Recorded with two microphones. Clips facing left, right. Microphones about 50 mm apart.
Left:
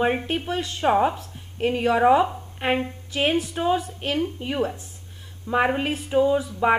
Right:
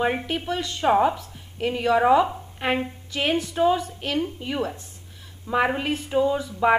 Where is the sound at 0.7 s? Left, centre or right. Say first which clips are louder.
Right 1 dB; centre.